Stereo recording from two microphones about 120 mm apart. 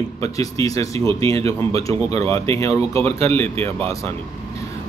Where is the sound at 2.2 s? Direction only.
25° left (ahead or behind).